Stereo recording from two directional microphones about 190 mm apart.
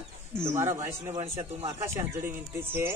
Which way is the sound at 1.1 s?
30° right (ahead or behind).